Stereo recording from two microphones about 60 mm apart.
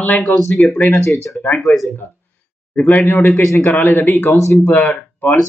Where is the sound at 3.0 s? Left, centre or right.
Left.